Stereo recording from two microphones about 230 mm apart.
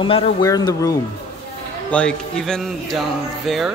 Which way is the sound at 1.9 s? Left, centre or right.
Centre.